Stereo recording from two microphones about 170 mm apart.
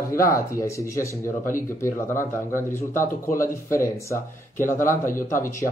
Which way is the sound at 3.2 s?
55° left (ahead or behind).